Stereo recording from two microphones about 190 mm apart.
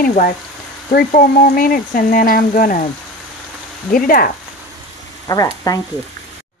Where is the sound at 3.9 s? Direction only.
50° left (ahead or behind).